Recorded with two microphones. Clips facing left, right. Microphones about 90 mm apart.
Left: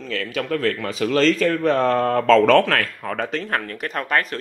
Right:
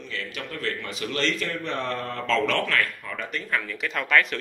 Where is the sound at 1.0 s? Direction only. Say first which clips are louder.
Left 11 dB; 90° left.